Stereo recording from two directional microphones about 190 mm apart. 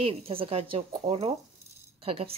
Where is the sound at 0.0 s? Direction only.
30° right (ahead or behind).